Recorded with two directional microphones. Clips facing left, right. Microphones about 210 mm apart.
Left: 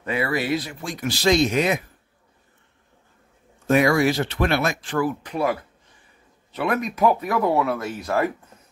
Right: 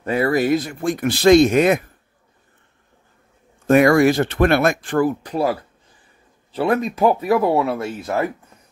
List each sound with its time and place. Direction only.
0.0 s speech: 40° right (ahead or behind)
3.6 s speech: 50° right (ahead or behind); by 8.1 s 25° right (ahead or behind)